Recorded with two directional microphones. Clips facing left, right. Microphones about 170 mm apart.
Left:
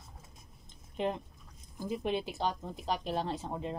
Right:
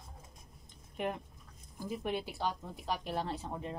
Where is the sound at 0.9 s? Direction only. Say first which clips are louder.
Left 3 dB; 25° left (ahead or behind).